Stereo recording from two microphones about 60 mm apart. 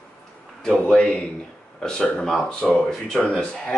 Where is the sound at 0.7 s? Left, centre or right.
Centre.